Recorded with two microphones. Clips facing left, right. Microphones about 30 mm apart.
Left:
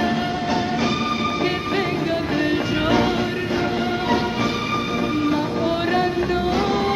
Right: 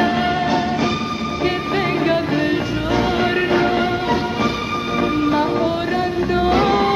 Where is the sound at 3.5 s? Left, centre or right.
Centre.